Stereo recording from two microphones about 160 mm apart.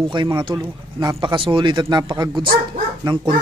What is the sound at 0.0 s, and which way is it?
Speech, 30° right (ahead or behind).